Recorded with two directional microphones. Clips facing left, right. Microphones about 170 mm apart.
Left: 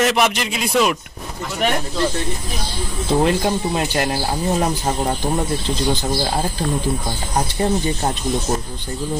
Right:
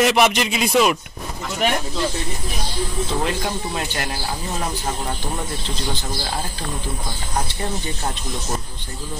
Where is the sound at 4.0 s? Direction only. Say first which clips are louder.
Left 7 dB; 35° left (ahead or behind).